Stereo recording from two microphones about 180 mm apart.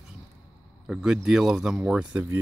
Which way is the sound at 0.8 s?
5° right (ahead or behind).